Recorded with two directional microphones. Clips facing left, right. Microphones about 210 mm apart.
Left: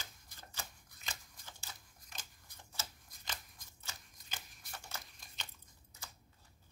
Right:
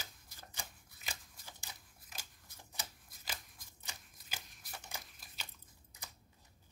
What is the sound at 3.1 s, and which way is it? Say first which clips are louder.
Shuffling cards: even; 5° right (ahead or behind).